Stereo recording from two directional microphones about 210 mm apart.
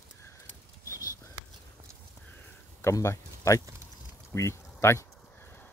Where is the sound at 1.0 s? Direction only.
15° left (ahead or behind).